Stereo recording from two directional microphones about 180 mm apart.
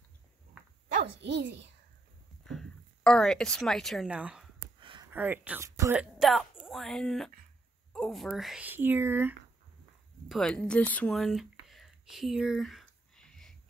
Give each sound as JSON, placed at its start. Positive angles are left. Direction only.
{"t": 1.2, "sound": "a child's voice", "side_deg": -75}
{"t": 2.4, "sound": "speech", "side_deg": 5}
{"t": 4.7, "sound": "a sound", "side_deg": -25}
{"t": 5.1, "sound": "speech", "side_deg": -10}
{"t": 6.1, "sound": "a woman's voice", "side_deg": 0}
{"t": 10.2, "sound": "a sound", "side_deg": 0}